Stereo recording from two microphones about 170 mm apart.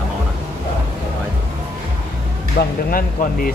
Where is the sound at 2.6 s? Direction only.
70° left (ahead or behind).